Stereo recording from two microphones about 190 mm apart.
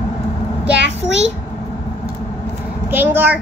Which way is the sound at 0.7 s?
70° right (ahead or behind).